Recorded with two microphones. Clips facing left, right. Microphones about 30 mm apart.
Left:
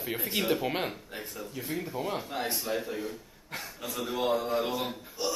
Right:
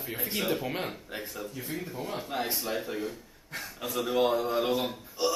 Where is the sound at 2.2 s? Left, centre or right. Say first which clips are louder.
Right 1 dB; centre.